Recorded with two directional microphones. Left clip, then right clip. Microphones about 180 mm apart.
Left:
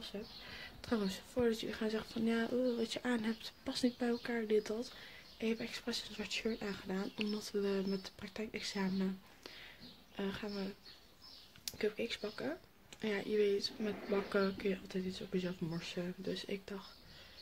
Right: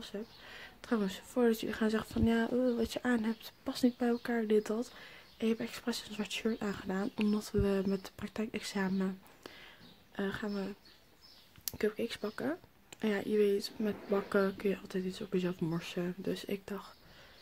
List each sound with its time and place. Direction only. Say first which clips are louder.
0.0 s speech: right 2 dB; 40° right (ahead or behind)
0.6 s a sound: right 3 dB; 25° right (ahead or behind)
1.3 s speech: right 5 dB; 40° right (ahead or behind)